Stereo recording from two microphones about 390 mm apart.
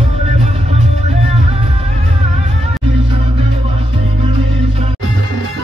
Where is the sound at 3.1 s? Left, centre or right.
Centre.